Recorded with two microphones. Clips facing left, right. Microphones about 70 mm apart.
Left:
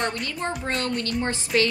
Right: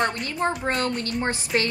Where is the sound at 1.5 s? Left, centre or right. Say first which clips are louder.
Left 3 dB; right.